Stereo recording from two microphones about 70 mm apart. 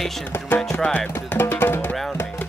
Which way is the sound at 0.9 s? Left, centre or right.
Left.